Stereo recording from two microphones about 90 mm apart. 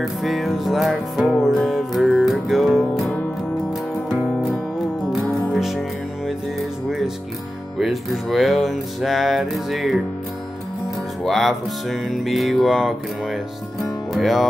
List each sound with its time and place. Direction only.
0.0 s music: centre (ahead or behind)
4.1 s music: centre (ahead or behind)
7.8 s music: centre (ahead or behind)
11.2 s music: centre (ahead or behind)
14.1 s music: centre (ahead or behind)